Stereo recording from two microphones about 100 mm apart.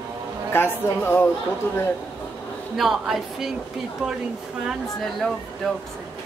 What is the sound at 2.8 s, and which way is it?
Speech, centre (ahead or behind).